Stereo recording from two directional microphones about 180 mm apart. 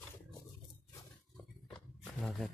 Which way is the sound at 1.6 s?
5° left (ahead or behind).